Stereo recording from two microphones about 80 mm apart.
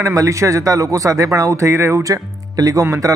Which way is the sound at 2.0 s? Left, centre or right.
Right.